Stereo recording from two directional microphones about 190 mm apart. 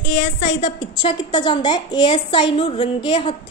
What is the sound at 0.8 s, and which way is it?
A woman's voice, 25° left (ahead or behind).